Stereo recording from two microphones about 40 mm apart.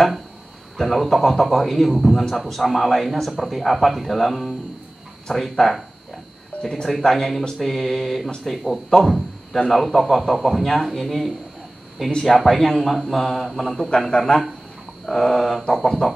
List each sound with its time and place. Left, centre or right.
0.7 s a man's voice: centre
9.0 s a sound: centre
9.7 s a man's voice: centre